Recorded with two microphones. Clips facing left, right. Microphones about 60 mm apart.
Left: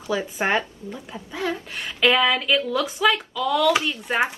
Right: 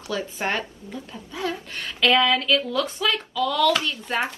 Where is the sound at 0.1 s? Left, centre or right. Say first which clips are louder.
Left 4 dB; centre.